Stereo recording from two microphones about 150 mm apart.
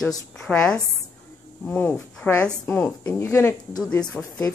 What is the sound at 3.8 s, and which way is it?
Speech, 5° left (ahead or behind).